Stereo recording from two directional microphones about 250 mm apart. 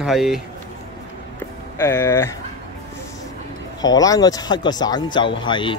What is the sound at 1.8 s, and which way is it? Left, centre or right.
Speech, centre.